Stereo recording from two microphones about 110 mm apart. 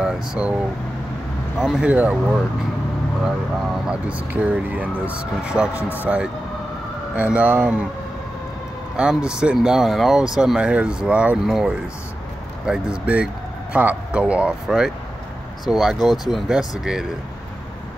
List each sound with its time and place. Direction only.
0.0 s speech: 10° right (ahead or behind)
1.6 s speech: 5° right (ahead or behind)
3.9 s speech: 10° right (ahead or behind)
5.8 s speech: 20° left (ahead or behind)
6.0 s speech: 10° right (ahead or behind)
8.9 s speech: 10° right (ahead or behind)